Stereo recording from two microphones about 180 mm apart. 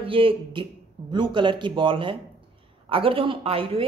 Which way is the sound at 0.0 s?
30° right (ahead or behind).